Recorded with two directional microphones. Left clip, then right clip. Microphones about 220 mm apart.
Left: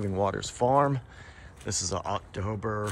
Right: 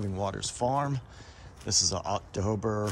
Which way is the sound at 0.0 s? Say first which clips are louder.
Left 4 dB; 10° right (ahead or behind).